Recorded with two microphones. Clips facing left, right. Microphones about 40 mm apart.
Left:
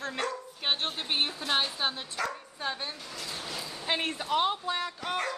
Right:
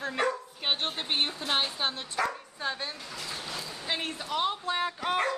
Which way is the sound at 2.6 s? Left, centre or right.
Centre.